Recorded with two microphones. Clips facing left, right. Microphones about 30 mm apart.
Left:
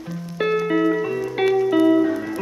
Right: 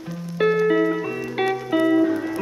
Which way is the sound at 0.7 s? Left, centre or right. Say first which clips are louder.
Left 1 dB; centre.